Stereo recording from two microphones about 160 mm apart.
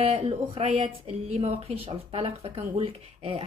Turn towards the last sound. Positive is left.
turn(degrees=-35)  # may be behind; listen again after turning